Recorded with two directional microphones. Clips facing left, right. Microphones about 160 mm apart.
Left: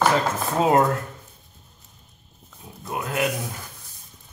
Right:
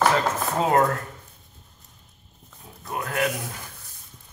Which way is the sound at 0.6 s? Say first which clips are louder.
Left 2 dB; 20° left (ahead or behind).